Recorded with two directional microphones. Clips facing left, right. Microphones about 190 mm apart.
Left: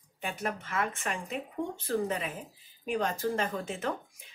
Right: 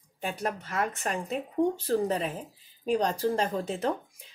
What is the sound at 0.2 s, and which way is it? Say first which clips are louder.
Speech: right 3 dB; 40° right (ahead or behind).